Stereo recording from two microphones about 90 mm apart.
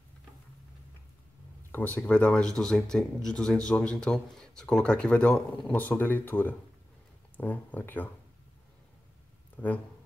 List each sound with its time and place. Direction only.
1.7 s speech: 20° left (ahead or behind)
9.6 s speech: 20° left (ahead or behind)